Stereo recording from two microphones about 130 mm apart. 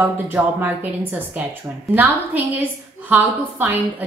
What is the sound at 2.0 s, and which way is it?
A woman's voice, 15° right (ahead or behind).